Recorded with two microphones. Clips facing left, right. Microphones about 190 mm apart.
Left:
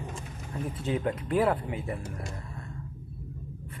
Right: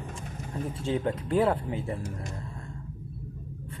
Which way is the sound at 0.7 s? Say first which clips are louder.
Right 1 dB; 25° right (ahead or behind).